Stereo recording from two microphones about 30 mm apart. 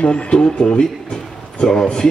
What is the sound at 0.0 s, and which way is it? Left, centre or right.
Speech, left.